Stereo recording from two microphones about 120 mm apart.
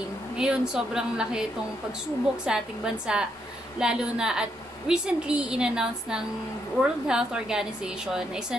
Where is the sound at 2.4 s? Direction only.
5° right (ahead or behind).